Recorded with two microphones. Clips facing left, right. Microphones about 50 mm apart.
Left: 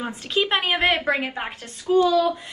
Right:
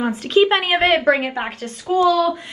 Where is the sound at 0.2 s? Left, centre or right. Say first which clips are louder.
Right 9 dB; right.